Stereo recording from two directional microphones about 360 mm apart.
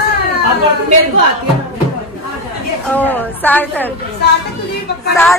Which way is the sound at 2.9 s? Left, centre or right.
Centre.